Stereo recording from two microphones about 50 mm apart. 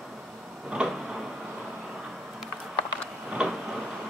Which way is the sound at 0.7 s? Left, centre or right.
Centre.